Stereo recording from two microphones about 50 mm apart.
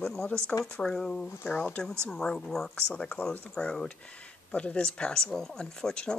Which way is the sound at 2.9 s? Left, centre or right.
Left.